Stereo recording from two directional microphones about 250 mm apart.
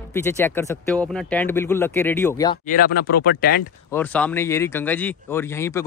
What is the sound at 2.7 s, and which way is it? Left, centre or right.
Speech, left.